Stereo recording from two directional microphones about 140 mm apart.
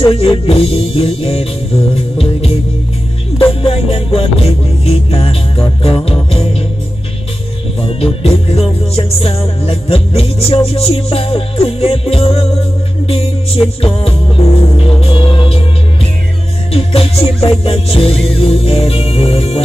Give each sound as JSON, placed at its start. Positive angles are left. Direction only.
{"t": 0.0, "sound": "music", "side_deg": 40}
{"t": 3.3, "sound": "music", "side_deg": 40}
{"t": 7.8, "sound": "music", "side_deg": 45}
{"t": 16.7, "sound": "music", "side_deg": 45}